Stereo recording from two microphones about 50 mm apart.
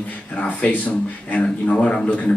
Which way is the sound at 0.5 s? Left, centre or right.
Left.